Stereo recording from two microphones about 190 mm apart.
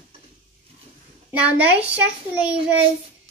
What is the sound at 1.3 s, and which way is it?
A child's voice, 5° right (ahead or behind).